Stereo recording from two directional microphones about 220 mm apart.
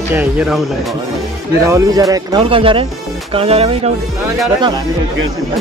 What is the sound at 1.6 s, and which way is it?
Speech, 15° right (ahead or behind).